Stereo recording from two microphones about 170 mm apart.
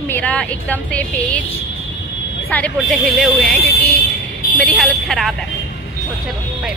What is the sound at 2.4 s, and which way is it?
Speech, 10° left (ahead or behind).